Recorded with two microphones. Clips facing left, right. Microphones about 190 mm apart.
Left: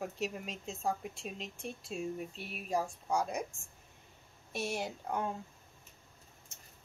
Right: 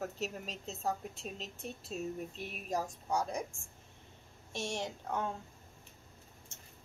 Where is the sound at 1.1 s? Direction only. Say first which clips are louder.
Left 1 dB; 40° right (ahead or behind).